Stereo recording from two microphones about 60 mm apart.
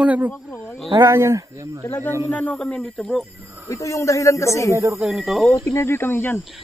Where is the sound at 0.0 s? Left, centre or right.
Right.